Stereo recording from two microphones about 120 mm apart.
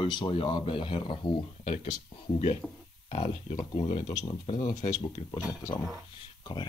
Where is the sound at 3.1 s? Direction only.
65° left (ahead or behind).